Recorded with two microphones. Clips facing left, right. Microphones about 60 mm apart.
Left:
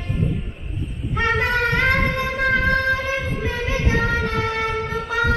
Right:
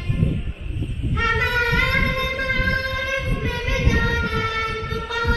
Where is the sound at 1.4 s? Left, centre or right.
Left.